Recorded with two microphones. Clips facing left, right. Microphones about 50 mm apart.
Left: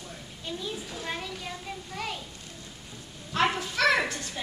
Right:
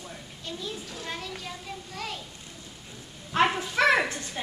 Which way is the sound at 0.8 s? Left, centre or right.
Centre.